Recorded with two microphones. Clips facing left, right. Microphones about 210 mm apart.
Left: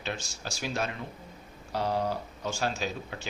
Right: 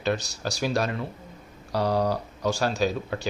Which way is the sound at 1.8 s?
75° right (ahead or behind).